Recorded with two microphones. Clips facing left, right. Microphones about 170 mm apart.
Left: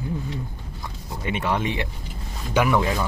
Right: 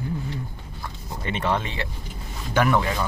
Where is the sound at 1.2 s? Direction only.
10° left (ahead or behind).